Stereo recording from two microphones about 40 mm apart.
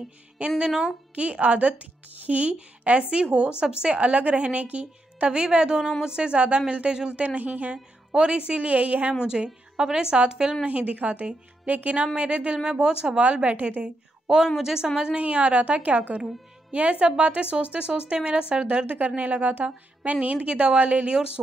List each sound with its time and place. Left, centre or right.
0.6 s a woman's voice: right
1.1 s a woman's voice: right
5.8 s a woman's voice: centre
7.1 s a woman's voice: right
7.7 s a woman's voice: right
9.2 s a woman's voice: centre
10.6 s a woman's voice: right
13.2 s a woman's voice: right
13.7 s a sound: right
14.6 s a woman's voice: centre
15.1 s a woman's voice: right
18.9 s a woman's voice: right